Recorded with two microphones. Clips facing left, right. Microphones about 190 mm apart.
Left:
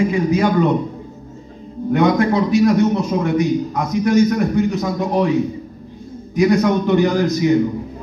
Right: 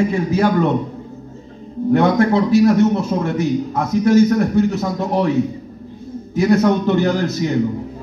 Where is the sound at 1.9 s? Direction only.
15° left (ahead or behind).